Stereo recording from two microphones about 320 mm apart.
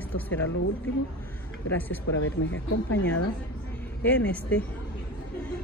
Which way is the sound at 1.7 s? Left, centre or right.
Centre.